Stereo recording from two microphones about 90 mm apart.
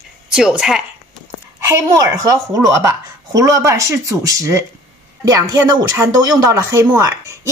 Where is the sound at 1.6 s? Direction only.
40° right (ahead or behind).